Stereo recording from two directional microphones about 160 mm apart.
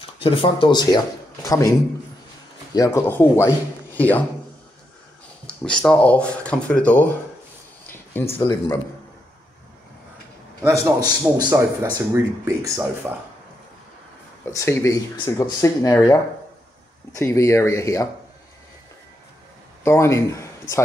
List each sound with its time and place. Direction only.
0.2 s speech: 30° left (ahead or behind); by 4.2 s 10° left (ahead or behind)
5.6 s speech: 5° left (ahead or behind)
8.3 s speech: 25° left (ahead or behind)
10.6 s a man's voice: 20° right (ahead or behind)
14.4 s speech: 15° left (ahead or behind)
19.8 s speech: 15° left (ahead or behind)